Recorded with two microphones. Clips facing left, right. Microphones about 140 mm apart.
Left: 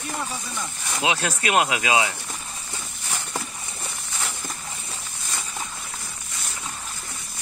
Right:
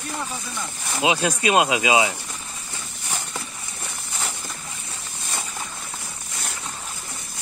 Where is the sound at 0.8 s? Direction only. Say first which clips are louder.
Right 4 dB; 15° right (ahead or behind).